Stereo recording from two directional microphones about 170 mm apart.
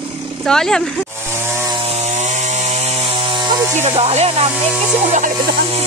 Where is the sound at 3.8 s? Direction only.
40° right (ahead or behind).